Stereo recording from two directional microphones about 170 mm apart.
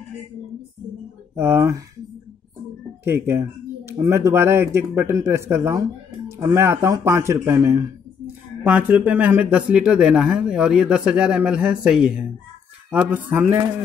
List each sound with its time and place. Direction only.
1.3 s speech: 15° right (ahead or behind)
3.0 s speech: 15° right (ahead or behind)